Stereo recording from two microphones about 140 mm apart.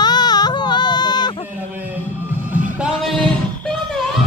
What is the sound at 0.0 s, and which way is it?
Baby cry, 30° left (ahead or behind).